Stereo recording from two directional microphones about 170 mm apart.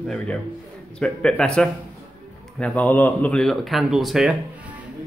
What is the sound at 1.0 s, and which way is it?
Speech, 5° left (ahead or behind).